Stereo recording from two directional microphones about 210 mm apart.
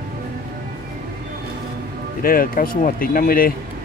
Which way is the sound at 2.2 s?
40° left (ahead or behind).